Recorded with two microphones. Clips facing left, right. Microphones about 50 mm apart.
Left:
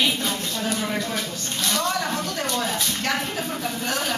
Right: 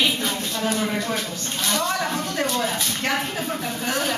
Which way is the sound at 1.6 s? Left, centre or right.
Centre.